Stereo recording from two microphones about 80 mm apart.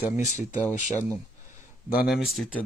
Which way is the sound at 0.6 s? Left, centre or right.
Left.